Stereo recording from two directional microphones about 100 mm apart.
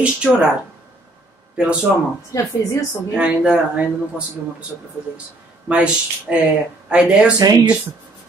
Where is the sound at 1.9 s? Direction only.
5° right (ahead or behind).